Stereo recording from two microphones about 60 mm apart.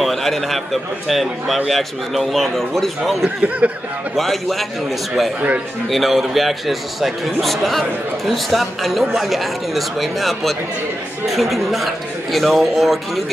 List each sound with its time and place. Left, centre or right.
0.0 s a man's voice: centre
3.4 s a sound: right
4.2 s speech: centre
5.9 s speech: centre